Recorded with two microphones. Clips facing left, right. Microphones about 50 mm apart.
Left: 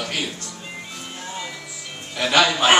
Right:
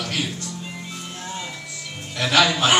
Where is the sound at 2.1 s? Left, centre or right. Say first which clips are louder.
Left 1 dB; centre.